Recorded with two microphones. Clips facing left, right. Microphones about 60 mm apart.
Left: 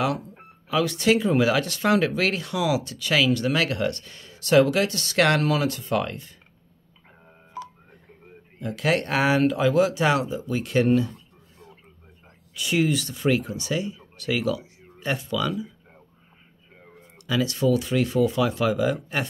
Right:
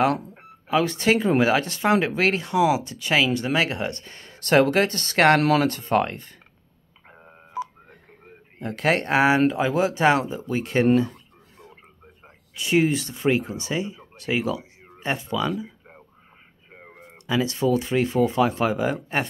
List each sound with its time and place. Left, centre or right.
0.0 s speech: right
5.4 s speech: right
7.6 s telephone dialing: centre
8.5 s speech: right
12.5 s speech: right
17.3 s speech: right